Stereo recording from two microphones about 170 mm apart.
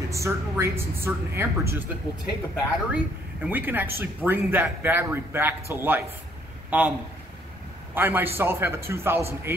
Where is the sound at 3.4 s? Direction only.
10° right (ahead or behind).